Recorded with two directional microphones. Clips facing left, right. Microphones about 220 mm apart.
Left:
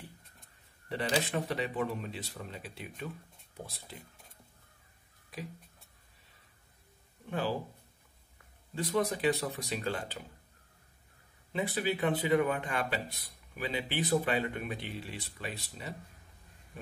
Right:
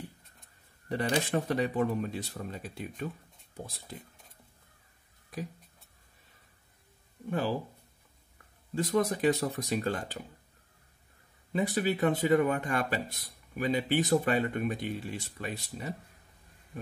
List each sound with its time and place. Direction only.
0.8 s speech: 50° right (ahead or behind)
8.7 s speech: 45° right (ahead or behind)
11.5 s speech: 45° right (ahead or behind)